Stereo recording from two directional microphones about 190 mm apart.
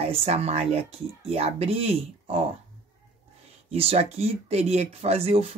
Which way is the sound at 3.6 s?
30° right (ahead or behind).